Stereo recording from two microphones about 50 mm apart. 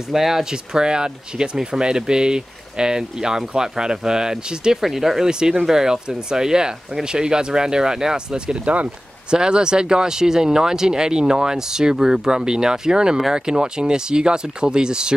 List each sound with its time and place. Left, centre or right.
0.1 s speech: centre